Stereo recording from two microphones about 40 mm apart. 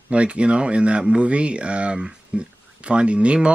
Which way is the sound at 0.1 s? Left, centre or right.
Right.